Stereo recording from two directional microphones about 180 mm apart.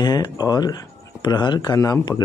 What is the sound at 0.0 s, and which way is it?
Speech, 20° left (ahead or behind).